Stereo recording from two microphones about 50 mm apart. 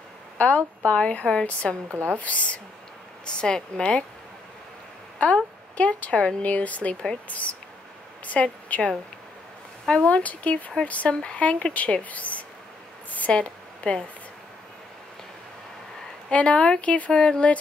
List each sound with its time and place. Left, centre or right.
0.4 s speech: left
1.9 s speech: right
2.1 s speech: left
3.3 s speech: centre
5.2 s speech: left
8.3 s speech: left
9.8 s speech: centre
10.1 s speech: left
13.1 s a sound: left
16.3 s speech: left